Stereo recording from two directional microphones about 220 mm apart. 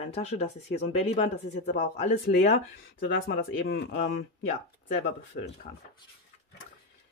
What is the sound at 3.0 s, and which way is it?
Speech, 50° left (ahead or behind).